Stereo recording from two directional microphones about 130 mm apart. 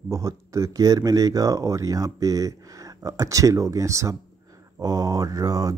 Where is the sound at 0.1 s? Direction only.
25° right (ahead or behind).